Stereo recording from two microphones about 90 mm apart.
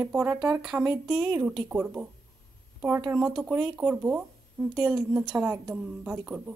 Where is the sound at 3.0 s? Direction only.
10° right (ahead or behind).